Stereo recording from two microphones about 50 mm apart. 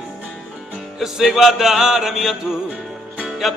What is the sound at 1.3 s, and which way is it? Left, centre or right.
Music, centre.